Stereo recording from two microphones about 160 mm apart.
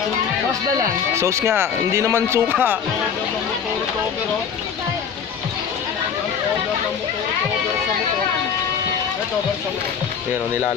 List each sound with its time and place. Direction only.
0.7 s speech: 20° right (ahead or behind)